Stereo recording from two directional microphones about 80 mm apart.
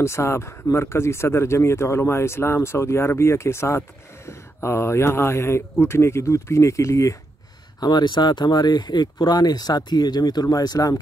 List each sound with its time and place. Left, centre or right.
0.0 s speech: left
7.8 s speech: left